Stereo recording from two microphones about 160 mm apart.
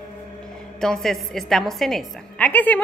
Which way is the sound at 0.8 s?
5° left (ahead or behind).